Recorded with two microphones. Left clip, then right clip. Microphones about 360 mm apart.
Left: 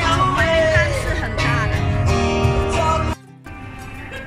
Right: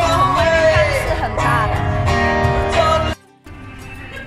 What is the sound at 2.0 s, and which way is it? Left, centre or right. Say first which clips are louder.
Music: right 4 dB; right.